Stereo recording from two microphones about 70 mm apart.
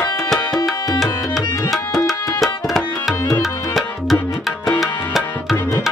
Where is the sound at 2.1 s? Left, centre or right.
Centre.